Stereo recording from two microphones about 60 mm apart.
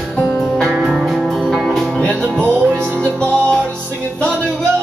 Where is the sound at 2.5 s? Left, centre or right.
Right.